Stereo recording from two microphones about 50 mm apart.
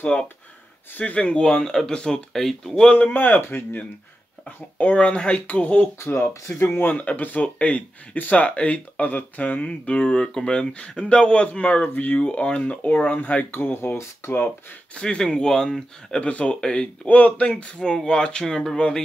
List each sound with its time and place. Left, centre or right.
0.9 s speech: left
3.1 s speech: left
4.9 s speech: centre
5.9 s speech: left
6.9 s speech: left
11.8 s speech: left
12.2 s speech: left
13.7 s speech: left
15.0 s speech: centre
16.2 s speech: left; by 18.8 s centre